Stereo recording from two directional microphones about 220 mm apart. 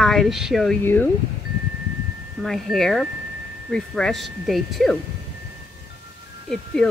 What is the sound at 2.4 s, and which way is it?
Speech, centre (ahead or behind).